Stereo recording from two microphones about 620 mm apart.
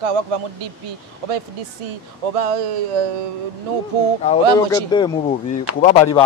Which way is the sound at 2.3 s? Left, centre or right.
Right.